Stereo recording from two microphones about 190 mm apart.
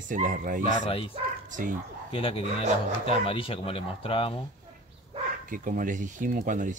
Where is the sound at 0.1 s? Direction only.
45° right (ahead or behind).